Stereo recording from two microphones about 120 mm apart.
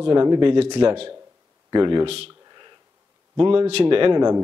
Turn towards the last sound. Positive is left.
turn(degrees=-45)  # may be behind; listen again after turning